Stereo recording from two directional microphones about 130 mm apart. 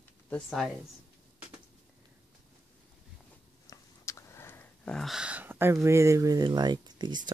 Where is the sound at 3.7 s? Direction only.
20° left (ahead or behind).